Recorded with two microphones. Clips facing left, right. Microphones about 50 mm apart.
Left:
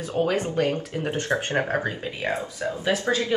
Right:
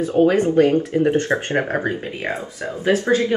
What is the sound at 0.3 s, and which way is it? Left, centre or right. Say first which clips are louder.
Speech: right 8 dB; right.